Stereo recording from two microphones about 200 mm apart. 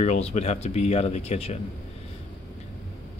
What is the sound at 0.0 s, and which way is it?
Speech, 35° left (ahead or behind).